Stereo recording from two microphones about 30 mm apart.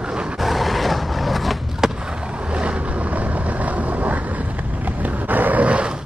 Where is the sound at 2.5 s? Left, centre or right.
Right.